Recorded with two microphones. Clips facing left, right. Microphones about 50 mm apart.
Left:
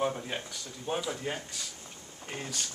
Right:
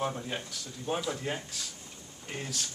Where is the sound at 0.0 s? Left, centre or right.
Centre.